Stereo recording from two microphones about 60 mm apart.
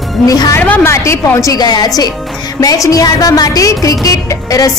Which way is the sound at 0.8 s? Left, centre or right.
Left.